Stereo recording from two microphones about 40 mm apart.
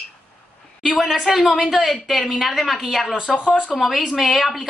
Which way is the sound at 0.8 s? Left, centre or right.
Centre.